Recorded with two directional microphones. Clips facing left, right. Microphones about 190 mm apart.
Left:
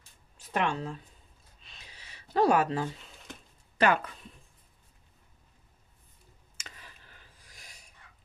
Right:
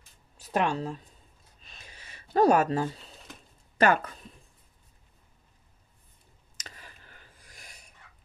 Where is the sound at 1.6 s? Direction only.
50° right (ahead or behind).